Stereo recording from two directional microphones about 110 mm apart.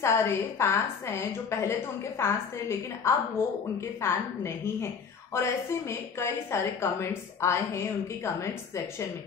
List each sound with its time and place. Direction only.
0.0 s a woman's voice: 25° left (ahead or behind)